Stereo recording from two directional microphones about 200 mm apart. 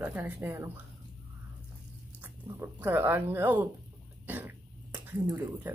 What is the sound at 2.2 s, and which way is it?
Speech, 10° right (ahead or behind).